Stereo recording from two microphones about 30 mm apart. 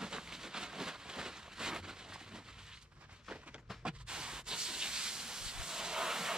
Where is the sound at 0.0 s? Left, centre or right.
Centre.